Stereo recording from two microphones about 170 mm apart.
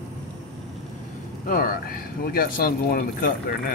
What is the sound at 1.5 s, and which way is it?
Speech, 60° left (ahead or behind).